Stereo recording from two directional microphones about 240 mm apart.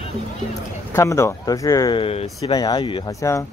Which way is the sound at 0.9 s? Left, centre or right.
Centre.